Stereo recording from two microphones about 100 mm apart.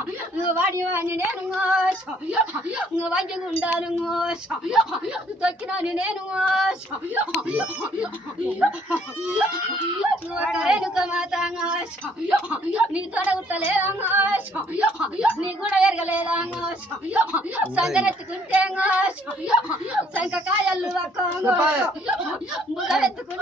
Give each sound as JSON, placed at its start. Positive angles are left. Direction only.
{"t": 0.4, "sound": "a woman's voice", "side_deg": -20}
{"t": 1.6, "sound": "a woman's voice", "side_deg": -10}
{"t": 22.8, "sound": "a woman's voice", "side_deg": -5}